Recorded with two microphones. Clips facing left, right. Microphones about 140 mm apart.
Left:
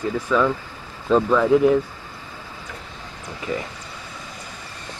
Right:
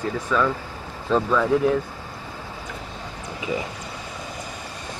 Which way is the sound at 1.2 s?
10° left (ahead or behind).